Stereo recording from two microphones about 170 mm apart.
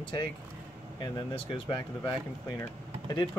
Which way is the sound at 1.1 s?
30° left (ahead or behind).